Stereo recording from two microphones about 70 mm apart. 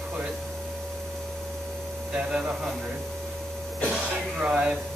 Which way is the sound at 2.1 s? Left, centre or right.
Centre.